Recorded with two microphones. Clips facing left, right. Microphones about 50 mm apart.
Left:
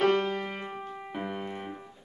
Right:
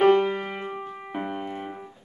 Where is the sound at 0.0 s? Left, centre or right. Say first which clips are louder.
Right 6 dB; centre.